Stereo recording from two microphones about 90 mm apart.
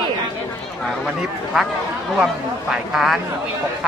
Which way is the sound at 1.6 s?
5° right (ahead or behind).